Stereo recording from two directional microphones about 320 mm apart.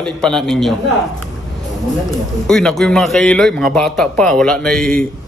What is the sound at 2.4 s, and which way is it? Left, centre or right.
A man's voice, centre.